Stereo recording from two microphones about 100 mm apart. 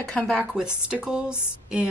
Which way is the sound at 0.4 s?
10° right (ahead or behind).